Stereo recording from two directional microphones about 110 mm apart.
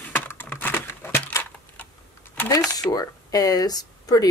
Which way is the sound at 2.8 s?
35° left (ahead or behind).